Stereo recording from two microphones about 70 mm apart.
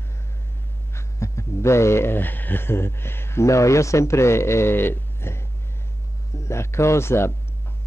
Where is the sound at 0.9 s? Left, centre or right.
Left.